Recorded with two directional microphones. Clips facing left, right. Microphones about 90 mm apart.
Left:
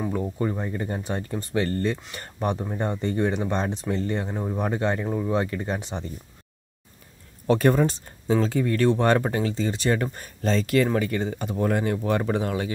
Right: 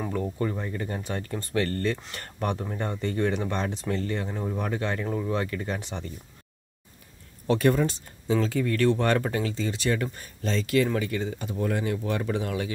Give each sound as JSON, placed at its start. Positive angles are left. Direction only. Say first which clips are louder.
{"t": 0.0, "sound": "speech", "louder": "left 2 dB", "side_deg": 15}
{"t": 2.0, "sound": "speech", "louder": "left 1 dB", "side_deg": 10}
{"t": 2.2, "sound": "speech", "louder": "left 3 dB", "side_deg": 20}
{"t": 7.4, "sound": "speech", "louder": "left 3 dB", "side_deg": 40}